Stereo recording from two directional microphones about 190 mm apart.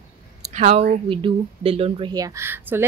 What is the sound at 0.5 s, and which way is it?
A woman's voice, 35° right (ahead or behind).